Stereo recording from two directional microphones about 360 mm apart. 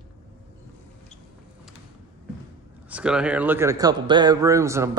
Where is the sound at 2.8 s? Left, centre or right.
Centre.